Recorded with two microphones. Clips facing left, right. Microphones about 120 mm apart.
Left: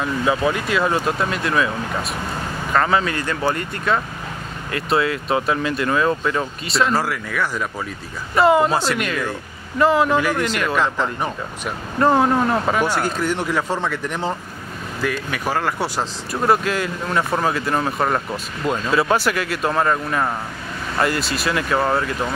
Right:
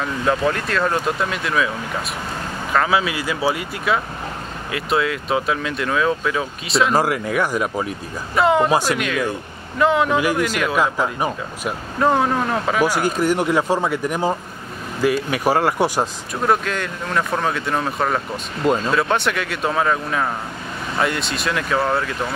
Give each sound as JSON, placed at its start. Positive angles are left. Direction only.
{"t": 0.0, "sound": "speech", "side_deg": 5}
{"t": 2.7, "sound": "speech", "side_deg": -5}
{"t": 6.9, "sound": "speech", "side_deg": -15}
{"t": 8.4, "sound": "speech", "side_deg": 0}
{"t": 8.6, "sound": "speech", "side_deg": -10}
{"t": 8.9, "sound": "speech", "side_deg": 0}
{"t": 12.8, "sound": "speech", "side_deg": -10}
{"t": 16.4, "sound": "speech", "side_deg": 5}